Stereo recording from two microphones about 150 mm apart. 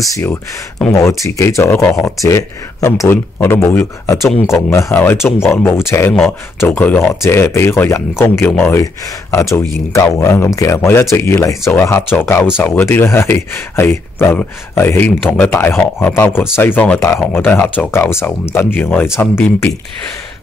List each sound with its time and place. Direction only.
0.0 s speech: 20° left (ahead or behind)